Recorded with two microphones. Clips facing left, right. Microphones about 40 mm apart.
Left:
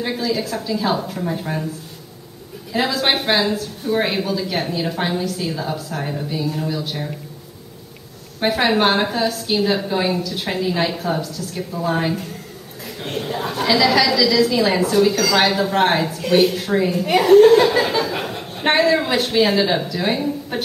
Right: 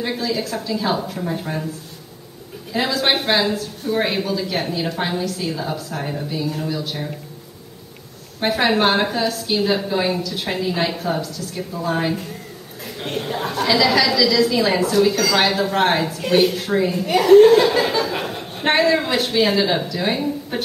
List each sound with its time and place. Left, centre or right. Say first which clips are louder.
0.0 s speech: left 1 dB; centre
2.7 s speech: even; centre
8.4 s speech: left 1 dB; centre